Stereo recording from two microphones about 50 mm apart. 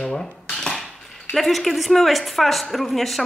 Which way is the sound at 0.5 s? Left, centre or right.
Centre.